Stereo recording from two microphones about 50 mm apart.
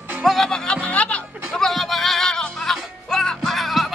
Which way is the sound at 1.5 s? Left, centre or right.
Centre.